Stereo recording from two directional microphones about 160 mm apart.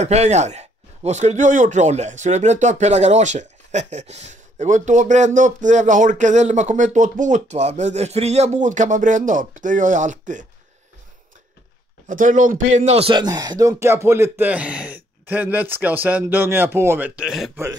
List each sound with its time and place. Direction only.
0.0 s a man's voice: 45° right (ahead or behind)
12.1 s a man's voice: 55° right (ahead or behind)
13.1 s speech: 25° right (ahead or behind); by 17.5 s 5° right (ahead or behind)